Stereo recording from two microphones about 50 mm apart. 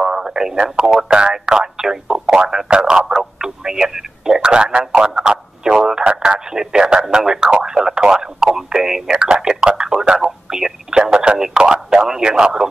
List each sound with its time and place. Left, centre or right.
0.0 s speech: centre
11.9 s radio: centre